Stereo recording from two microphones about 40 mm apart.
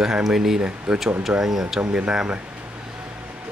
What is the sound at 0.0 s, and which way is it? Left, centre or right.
Speech, centre.